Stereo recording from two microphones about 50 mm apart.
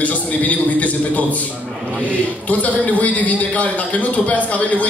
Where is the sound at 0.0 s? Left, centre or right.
Left.